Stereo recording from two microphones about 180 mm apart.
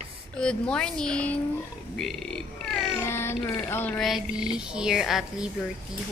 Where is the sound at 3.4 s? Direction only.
10° left (ahead or behind).